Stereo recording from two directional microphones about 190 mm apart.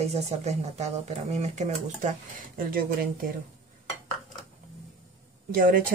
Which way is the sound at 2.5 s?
50° right (ahead or behind).